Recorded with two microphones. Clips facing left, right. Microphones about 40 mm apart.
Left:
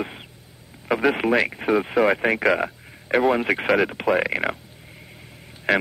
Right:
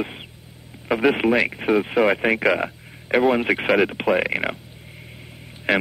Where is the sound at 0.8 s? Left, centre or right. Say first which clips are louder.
Right 2 dB; centre.